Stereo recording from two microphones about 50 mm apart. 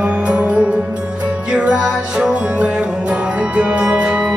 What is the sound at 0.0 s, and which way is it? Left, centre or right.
Music, right.